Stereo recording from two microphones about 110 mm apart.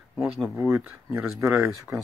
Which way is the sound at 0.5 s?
25° right (ahead or behind).